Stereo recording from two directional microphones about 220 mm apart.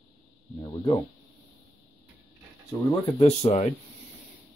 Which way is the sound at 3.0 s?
25° left (ahead or behind).